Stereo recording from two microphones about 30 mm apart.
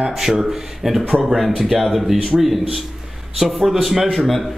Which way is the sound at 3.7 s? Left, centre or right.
Centre.